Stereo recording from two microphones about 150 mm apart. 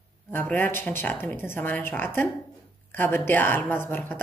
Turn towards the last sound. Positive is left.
turn(degrees=15)  # may be behind; listen again after turning